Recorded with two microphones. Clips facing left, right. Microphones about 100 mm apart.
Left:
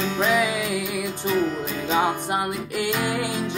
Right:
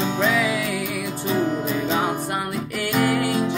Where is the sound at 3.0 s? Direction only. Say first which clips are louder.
Right 5 dB; 20° left (ahead or behind).